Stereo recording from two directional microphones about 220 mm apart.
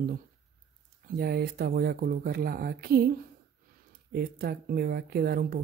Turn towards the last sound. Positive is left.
turn(degrees=-40)  # may be behind; listen again after turning